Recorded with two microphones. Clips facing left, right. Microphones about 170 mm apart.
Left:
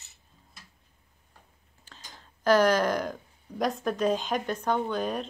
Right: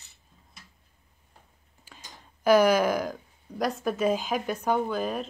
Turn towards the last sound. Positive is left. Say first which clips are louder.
# right 1 dB
turn(degrees=-5)  # may be behind; listen again after turning